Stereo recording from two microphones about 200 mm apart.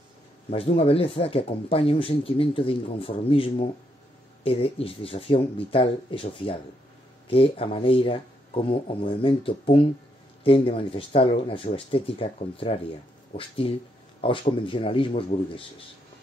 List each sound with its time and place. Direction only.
0.5 s speech: 30° left (ahead or behind)